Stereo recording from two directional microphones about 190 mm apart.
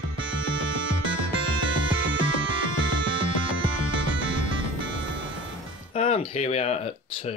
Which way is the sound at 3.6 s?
25° right (ahead or behind).